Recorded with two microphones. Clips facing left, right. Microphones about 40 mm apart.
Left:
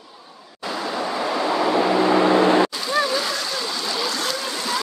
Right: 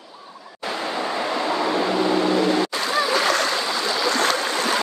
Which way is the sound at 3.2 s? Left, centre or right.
Right.